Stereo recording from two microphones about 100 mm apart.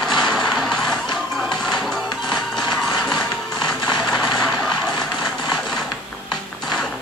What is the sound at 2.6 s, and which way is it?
Music, 45° left (ahead or behind).